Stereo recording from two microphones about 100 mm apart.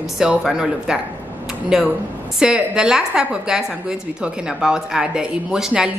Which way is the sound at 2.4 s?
5° right (ahead or behind).